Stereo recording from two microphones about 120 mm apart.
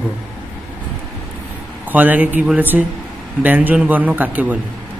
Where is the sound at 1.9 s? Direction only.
15° right (ahead or behind).